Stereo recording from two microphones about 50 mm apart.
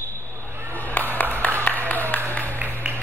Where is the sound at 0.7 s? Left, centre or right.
Left.